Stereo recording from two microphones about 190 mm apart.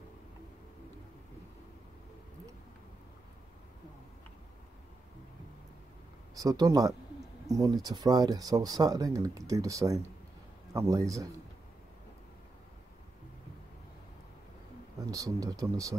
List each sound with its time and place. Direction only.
6.3 s speech: 20° right (ahead or behind)
15.0 s speech: 20° right (ahead or behind)